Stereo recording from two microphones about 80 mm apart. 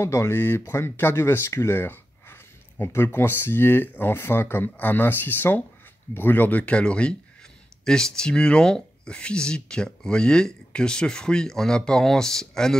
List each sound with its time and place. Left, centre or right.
0.0 s speech: left; by 12.7 s centre